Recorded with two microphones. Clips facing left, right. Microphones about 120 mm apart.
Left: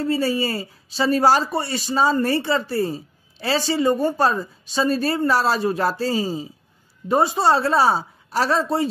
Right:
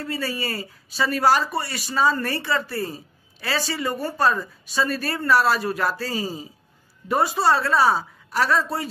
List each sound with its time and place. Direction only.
0.0 s speech: 25° left (ahead or behind)